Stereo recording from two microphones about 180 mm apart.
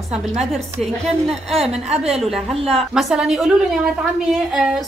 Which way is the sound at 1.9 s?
35° right (ahead or behind).